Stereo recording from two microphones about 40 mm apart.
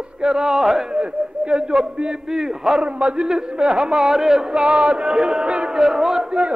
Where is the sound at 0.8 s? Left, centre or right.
Right.